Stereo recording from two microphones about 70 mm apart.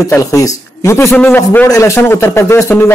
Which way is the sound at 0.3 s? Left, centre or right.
Left.